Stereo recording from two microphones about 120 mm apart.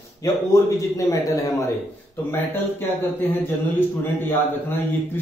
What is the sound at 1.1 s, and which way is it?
Speech, 30° left (ahead or behind).